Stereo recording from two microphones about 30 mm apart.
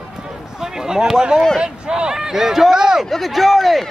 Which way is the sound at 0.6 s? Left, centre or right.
Centre.